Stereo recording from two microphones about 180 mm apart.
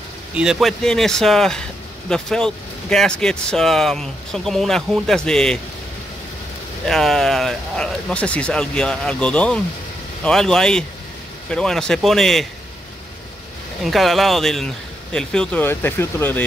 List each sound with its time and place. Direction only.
0.3 s speech: 5° right (ahead or behind)
6.9 s speech: centre (ahead or behind)
13.8 s speech: centre (ahead or behind)